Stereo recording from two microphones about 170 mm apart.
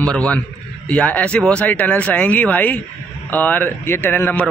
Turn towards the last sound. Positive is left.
turn(degrees=10)  # may be behind; listen again after turning